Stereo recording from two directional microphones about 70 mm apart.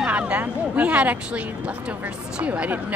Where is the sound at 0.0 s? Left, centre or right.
Centre.